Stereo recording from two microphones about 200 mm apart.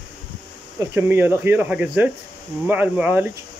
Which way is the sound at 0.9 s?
10° right (ahead or behind).